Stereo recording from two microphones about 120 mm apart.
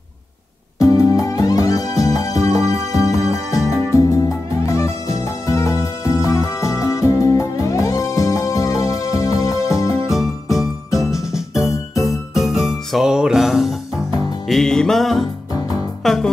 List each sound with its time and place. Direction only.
0.7 s music: 30° left (ahead or behind)
2.5 s music: 55° right (ahead or behind)
2.9 s music: 25° left (ahead or behind)
10.1 s music: 5° right (ahead or behind)